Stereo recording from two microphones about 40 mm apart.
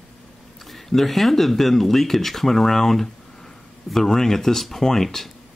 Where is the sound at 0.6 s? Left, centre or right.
Centre.